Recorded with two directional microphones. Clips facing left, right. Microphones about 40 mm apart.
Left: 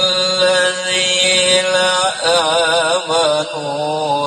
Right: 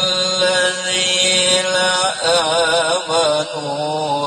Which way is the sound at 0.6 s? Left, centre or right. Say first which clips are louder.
Left 2 dB; centre.